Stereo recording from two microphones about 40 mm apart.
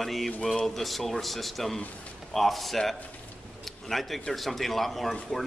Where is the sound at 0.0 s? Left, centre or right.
Centre.